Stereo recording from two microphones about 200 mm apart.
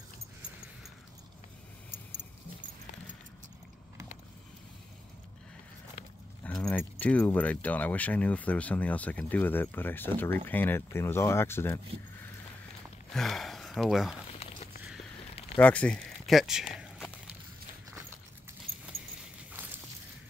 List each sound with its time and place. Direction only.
6.4 s speech: 5° left (ahead or behind)
13.1 s speech: centre (ahead or behind)
14.4 s a sound: 30° left (ahead or behind)
15.6 s speech: 5° left (ahead or behind)